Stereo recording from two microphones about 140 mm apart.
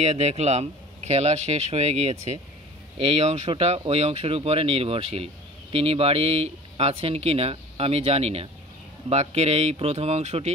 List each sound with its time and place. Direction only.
0.0 s speech: 50° right (ahead or behind)